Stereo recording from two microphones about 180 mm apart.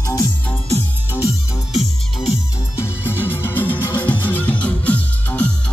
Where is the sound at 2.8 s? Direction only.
10° left (ahead or behind).